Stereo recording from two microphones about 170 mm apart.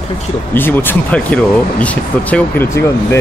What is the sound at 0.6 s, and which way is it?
Speech, 10° left (ahead or behind).